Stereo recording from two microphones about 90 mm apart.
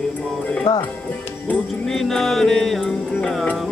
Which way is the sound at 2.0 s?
5° left (ahead or behind).